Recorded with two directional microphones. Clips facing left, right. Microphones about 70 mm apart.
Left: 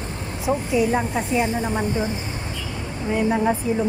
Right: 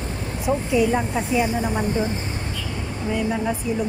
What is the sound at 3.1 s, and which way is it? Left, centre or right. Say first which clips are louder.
Speech: left 4 dB; left.